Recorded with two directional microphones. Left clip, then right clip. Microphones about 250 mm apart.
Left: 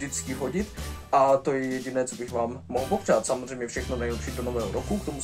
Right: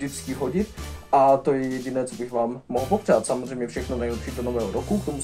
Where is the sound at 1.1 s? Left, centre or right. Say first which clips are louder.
Right 3 dB; centre.